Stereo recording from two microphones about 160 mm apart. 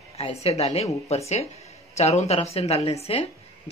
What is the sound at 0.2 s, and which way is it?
Speech, 40° left (ahead or behind).